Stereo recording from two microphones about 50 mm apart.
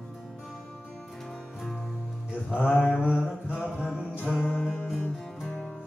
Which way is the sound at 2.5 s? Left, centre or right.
Centre.